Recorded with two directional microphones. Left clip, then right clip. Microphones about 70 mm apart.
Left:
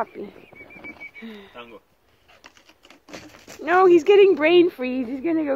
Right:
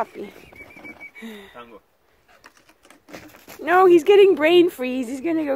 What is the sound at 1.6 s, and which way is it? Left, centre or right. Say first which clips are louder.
Speech: left 1 dB; right.